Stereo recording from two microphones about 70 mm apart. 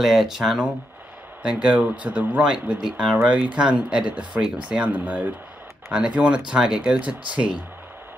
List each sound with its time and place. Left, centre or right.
0.0 s speech: centre